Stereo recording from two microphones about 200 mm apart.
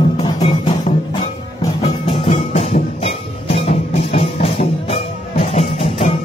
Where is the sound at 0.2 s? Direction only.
35° left (ahead or behind).